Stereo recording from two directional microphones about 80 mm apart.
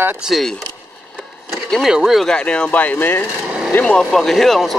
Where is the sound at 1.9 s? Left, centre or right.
Centre.